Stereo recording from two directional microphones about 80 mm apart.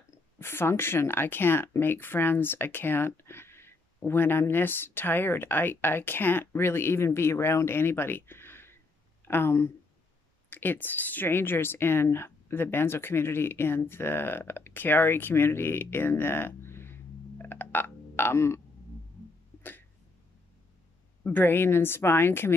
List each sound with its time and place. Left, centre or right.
0.4 s speech: left
21.2 s speech: left